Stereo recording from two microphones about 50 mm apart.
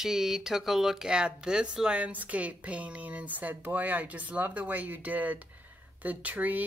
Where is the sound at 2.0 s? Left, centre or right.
Right.